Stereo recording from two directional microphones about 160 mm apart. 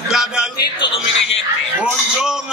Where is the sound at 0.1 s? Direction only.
5° right (ahead or behind).